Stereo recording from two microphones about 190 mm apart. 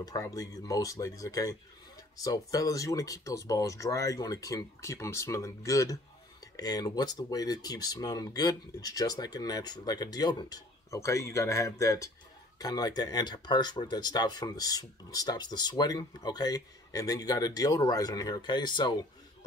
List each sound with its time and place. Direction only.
0.0 s speech: 20° left (ahead or behind)